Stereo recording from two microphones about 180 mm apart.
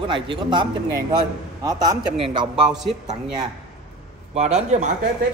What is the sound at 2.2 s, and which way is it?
Speech, centre (ahead or behind).